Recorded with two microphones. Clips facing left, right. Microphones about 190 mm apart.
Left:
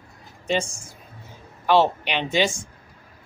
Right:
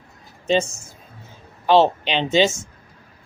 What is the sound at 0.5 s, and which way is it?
Speech, 25° right (ahead or behind).